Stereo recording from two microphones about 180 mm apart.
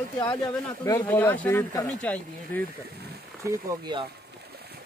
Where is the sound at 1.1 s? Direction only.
10° left (ahead or behind).